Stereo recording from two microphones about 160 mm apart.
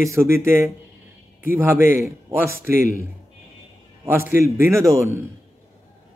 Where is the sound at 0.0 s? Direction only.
15° right (ahead or behind).